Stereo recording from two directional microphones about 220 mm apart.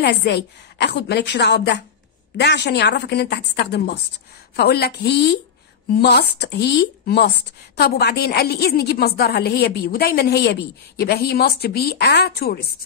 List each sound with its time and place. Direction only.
0.0 s a woman's voice: 50° left (ahead or behind)